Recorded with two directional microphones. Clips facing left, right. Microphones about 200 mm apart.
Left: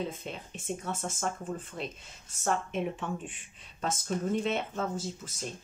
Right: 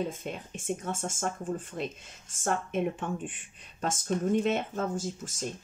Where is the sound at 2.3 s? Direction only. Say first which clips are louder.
Right 1 dB; 50° right (ahead or behind).